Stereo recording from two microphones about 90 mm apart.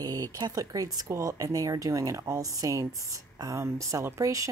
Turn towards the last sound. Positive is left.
turn(degrees=-35)  # may be behind; listen again after turning